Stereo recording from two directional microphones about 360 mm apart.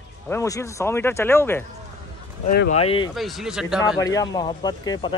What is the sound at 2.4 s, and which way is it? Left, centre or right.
Speech, left.